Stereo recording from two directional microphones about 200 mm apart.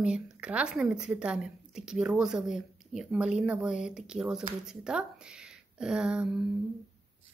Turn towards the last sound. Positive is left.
turn(degrees=-5)  # may be behind; listen again after turning